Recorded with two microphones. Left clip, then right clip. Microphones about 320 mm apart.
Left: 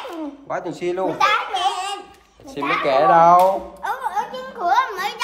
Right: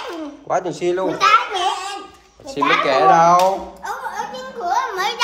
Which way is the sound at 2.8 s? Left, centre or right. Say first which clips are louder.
Left 1 dB; centre.